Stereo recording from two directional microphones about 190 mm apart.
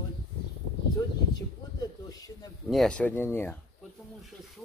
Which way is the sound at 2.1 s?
20° left (ahead or behind).